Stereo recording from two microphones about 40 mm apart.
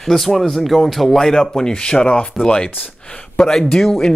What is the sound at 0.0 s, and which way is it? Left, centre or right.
Speech, centre.